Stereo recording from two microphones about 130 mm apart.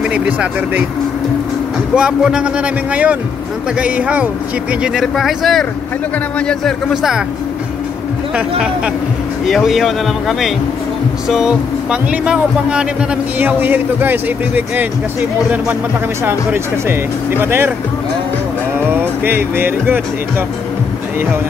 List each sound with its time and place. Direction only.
0.1 s speech: 10° right (ahead or behind)
2.0 s speech: 5° right (ahead or behind)
8.4 s speech: 10° right (ahead or behind)
16.3 s speech: 20° right (ahead or behind)
18.9 s speech: 15° right (ahead or behind)